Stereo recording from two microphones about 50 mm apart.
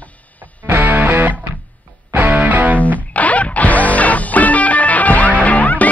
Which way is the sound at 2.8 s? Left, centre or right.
Left.